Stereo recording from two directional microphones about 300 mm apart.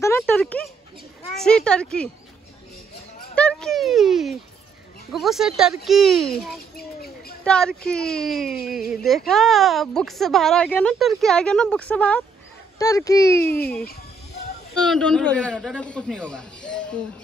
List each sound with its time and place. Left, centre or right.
0.0 s speech: centre
3.3 s a child's voice: centre
6.8 s speech: left
7.4 s speech: centre
14.8 s speech: centre